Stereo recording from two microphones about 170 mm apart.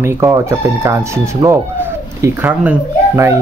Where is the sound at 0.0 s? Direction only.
15° right (ahead or behind).